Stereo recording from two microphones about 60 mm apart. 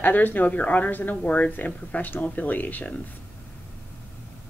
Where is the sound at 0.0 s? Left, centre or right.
Left.